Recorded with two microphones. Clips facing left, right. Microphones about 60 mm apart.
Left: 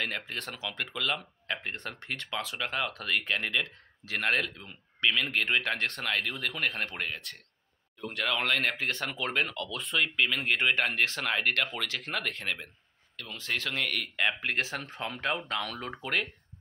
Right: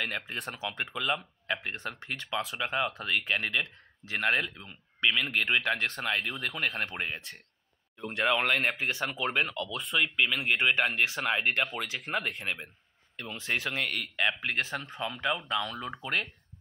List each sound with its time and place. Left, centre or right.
0.3 s speech: centre
1.5 s speech: centre
3.0 s speech: centre
5.6 s speech: centre
14.1 s speech: centre
15.0 s speech: left